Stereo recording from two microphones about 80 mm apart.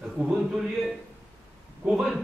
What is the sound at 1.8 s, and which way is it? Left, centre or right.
Speech, centre.